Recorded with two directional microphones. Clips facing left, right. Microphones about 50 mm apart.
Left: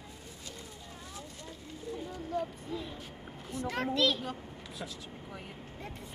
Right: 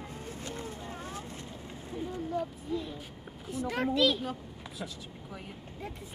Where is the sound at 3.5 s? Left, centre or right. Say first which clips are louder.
Right 3 dB; centre.